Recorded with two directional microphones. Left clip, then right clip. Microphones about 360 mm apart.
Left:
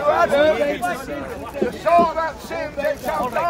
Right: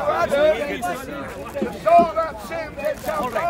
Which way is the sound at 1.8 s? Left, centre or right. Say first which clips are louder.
Right 1 dB; left.